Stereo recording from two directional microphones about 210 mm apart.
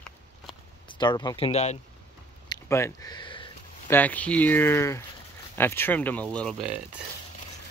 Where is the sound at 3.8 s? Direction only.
10° left (ahead or behind).